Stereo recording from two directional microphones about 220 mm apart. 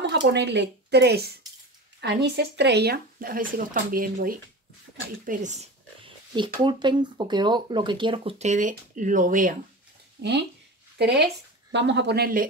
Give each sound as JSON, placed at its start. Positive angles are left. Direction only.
{"t": 0.1, "sound": "speech", "side_deg": -50}
{"t": 10.2, "sound": "speech", "side_deg": -50}